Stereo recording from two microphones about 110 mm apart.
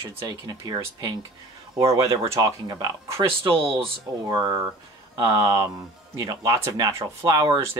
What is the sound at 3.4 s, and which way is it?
Speech, 50° right (ahead or behind).